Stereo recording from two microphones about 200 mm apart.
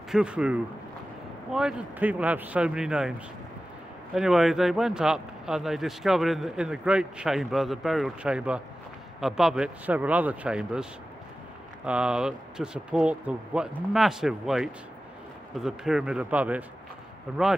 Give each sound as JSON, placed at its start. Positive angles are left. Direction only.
{"t": 0.1, "sound": "speech", "side_deg": -5}